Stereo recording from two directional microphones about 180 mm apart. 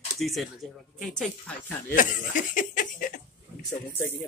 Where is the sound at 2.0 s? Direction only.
45° left (ahead or behind).